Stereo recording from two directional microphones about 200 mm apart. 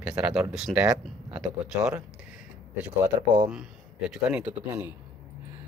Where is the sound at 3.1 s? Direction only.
20° right (ahead or behind).